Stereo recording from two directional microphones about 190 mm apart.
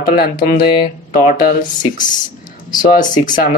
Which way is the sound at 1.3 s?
50° left (ahead or behind).